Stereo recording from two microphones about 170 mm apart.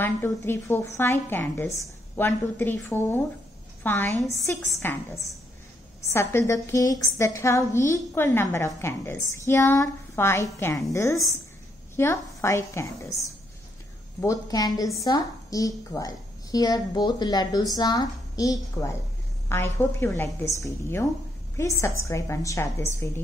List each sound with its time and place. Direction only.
0.0 s a woman's voice: 15° left (ahead or behind)
6.0 s a woman's voice: 15° left (ahead or behind)